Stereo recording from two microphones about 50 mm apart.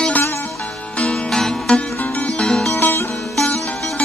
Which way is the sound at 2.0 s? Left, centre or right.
Left.